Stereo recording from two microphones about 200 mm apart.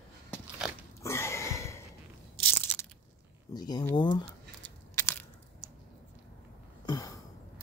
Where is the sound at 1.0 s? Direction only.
15° left (ahead or behind).